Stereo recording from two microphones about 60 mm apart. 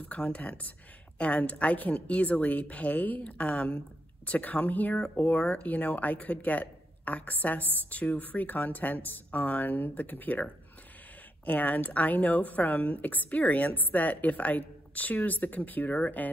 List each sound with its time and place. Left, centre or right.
0.0 s speech: left